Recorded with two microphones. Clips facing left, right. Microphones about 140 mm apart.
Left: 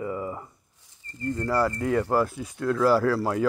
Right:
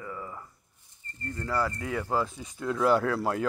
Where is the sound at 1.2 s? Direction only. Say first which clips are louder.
Left 6 dB; 10° left (ahead or behind).